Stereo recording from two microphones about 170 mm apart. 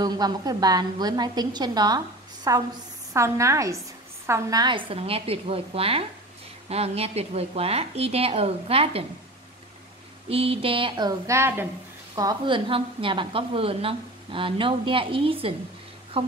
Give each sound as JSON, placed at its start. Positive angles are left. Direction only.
{"t": 0.0, "sound": "a woman's voice", "side_deg": -25}
{"t": 10.3, "sound": "a woman's voice", "side_deg": -35}
{"t": 12.2, "sound": "a woman's voice", "side_deg": -25}